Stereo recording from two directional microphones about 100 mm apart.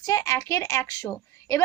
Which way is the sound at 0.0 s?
35° left (ahead or behind).